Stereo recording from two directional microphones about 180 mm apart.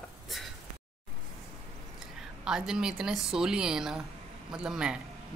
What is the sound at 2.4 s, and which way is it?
Speech, 5° right (ahead or behind).